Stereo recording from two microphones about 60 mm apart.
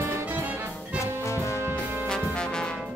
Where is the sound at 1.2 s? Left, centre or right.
Left.